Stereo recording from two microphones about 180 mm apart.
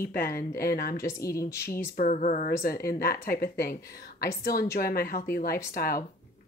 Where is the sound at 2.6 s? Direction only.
55° left (ahead or behind).